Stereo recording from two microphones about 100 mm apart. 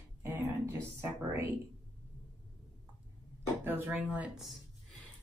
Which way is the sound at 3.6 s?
20° right (ahead or behind).